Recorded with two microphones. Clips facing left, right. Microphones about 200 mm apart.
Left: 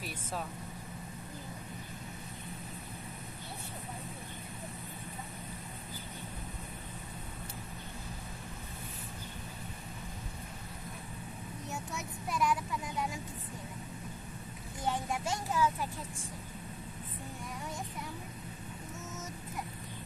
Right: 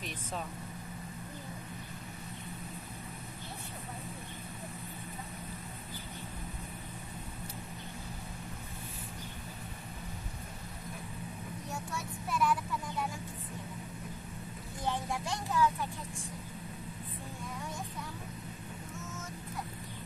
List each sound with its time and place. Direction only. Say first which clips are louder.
11.7 s child singing: right 1 dB; 20° left (ahead or behind)
15.5 s vehicle: right 2 dB; 15° left (ahead or behind)